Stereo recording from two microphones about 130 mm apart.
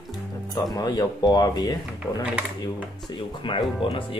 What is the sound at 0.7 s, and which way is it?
Speech, 30° left (ahead or behind).